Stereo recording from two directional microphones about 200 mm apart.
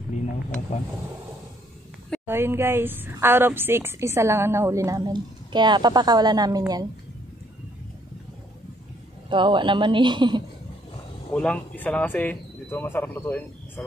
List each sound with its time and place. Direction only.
2.2 s a woman's voice: 10° right (ahead or behind)
9.3 s a woman's voice: 25° right (ahead or behind)
11.3 s speech: 5° left (ahead or behind)